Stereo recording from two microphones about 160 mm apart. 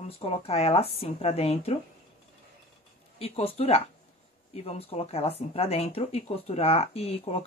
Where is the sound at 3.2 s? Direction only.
40° left (ahead or behind).